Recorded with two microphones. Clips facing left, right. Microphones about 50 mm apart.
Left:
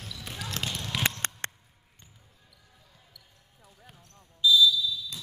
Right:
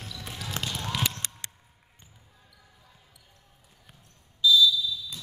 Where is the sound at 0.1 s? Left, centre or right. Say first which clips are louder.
Even; centre.